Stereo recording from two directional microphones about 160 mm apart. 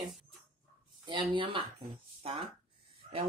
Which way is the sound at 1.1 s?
30° right (ahead or behind).